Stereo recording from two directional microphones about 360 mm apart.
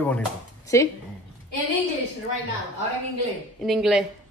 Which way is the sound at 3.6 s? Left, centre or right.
Centre.